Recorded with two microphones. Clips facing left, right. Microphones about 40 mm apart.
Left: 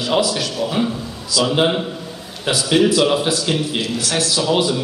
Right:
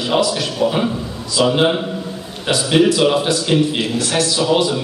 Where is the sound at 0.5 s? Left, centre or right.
Centre.